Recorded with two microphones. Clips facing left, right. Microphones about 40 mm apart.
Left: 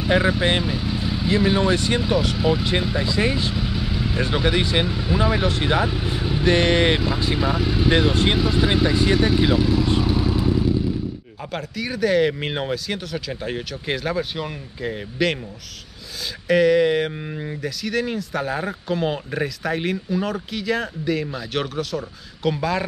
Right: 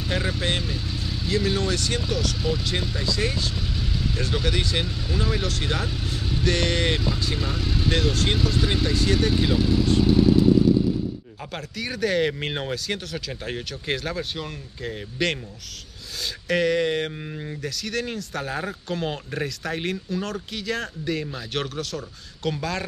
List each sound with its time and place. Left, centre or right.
0.0 s speech: centre
10.0 s motorcycle: centre
11.5 s speech: centre
16.4 s speech: centre